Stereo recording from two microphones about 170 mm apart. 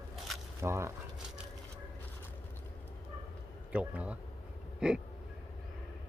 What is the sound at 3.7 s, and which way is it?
Speech, 10° right (ahead or behind).